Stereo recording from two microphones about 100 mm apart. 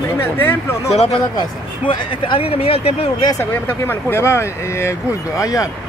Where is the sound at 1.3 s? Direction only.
55° left (ahead or behind); by 3.1 s 75° left (ahead or behind).